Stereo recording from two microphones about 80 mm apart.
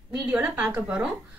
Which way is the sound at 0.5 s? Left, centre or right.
Right.